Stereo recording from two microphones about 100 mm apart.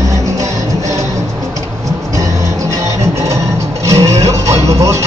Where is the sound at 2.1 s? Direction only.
30° right (ahead or behind).